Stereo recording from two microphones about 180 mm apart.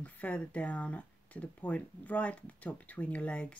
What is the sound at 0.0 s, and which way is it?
Speech, 5° left (ahead or behind).